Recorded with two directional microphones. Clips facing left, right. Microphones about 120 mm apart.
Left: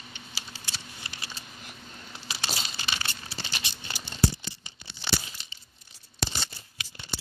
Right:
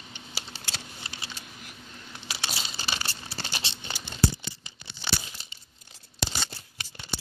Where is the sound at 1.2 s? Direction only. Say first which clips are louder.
Even; 5° left (ahead or behind).